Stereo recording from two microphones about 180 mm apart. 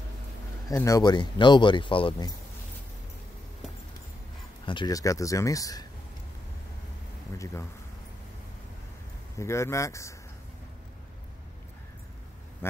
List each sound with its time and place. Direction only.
0.7 s speech: 20° left (ahead or behind)
4.6 s speech: 25° left (ahead or behind)
9.4 s speech: 15° left (ahead or behind)